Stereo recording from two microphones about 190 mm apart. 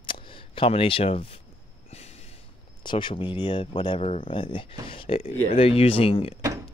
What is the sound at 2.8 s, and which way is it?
Speech, 25° left (ahead or behind).